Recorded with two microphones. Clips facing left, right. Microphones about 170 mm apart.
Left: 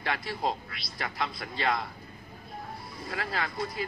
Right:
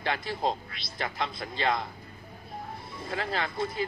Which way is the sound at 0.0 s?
25° right (ahead or behind).